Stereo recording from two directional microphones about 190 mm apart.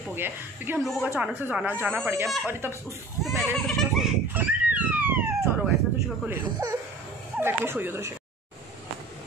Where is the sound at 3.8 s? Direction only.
Centre (ahead or behind).